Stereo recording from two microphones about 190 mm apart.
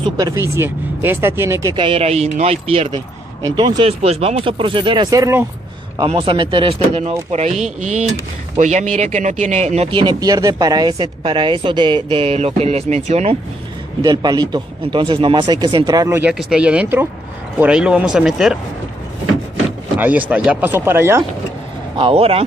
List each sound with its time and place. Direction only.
0.0 s speech: 20° right (ahead or behind)
5.9 s speech: 30° right (ahead or behind)
14.0 s speech: 20° right (ahead or behind); by 18.6 s 5° right (ahead or behind)
20.0 s speech: 10° right (ahead or behind)
21.9 s speech: 30° right (ahead or behind)